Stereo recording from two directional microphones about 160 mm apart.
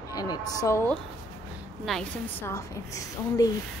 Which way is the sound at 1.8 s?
5° left (ahead or behind).